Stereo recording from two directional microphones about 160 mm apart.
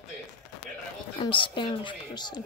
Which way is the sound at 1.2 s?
30° left (ahead or behind).